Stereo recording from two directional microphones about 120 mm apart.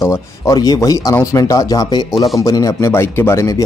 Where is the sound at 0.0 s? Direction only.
25° left (ahead or behind).